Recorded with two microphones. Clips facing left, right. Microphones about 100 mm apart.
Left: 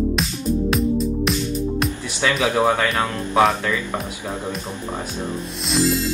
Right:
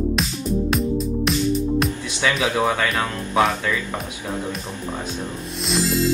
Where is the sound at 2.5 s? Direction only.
20° left (ahead or behind).